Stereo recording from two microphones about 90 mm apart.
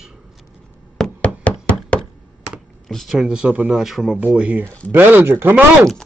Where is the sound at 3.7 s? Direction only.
Centre (ahead or behind).